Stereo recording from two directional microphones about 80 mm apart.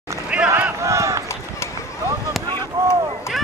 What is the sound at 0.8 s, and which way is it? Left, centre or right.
Run, right.